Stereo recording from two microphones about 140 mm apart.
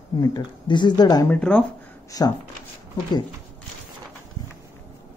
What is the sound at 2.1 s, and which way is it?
Speech, 25° left (ahead or behind).